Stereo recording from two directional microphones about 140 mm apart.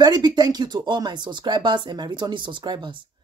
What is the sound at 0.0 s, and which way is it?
Speech, 30° right (ahead or behind).